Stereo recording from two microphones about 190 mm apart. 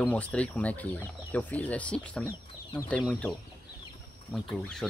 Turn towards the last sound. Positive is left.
turn(degrees=5)  # may be behind; listen again after turning